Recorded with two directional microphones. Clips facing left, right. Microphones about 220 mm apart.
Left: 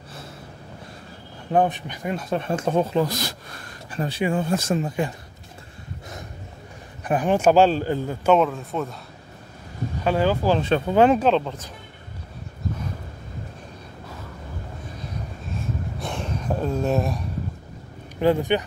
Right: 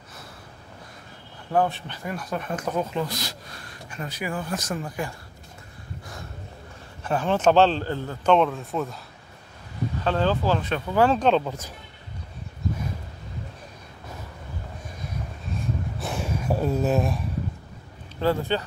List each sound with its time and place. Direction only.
1.5 s speech: 20° left (ahead or behind); by 3.3 s 45° left (ahead or behind)
3.9 s speech: 30° left (ahead or behind)
7.1 s a man's voice: 15° left (ahead or behind)
10.0 s a man's voice: 10° left (ahead or behind)
10.6 s speech: 25° left (ahead or behind)
11.1 s speech: centre (ahead or behind)
15.6 s a sound: 5° right (ahead or behind)
18.2 s a man's voice: 15° left (ahead or behind)